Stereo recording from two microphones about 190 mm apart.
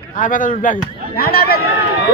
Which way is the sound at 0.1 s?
45° left (ahead or behind).